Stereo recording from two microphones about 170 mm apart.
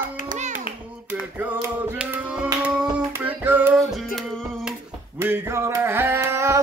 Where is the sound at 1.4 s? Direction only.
10° right (ahead or behind).